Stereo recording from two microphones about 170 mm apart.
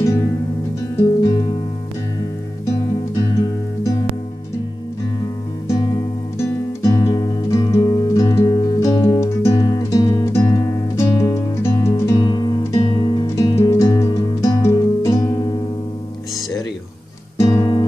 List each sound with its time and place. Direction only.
0.9 s music: 20° left (ahead or behind)
6.3 s music: 20° left (ahead or behind)
17.4 s music: 20° left (ahead or behind)